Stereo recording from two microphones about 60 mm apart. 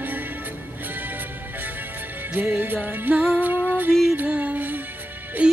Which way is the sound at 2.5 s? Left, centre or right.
Right.